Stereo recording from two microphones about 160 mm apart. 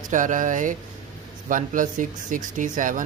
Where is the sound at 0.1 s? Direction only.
55° right (ahead or behind).